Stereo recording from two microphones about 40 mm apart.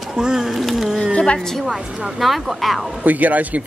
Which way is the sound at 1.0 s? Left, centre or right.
Left.